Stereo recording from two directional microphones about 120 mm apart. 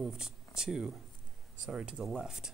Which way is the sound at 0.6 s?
5° right (ahead or behind).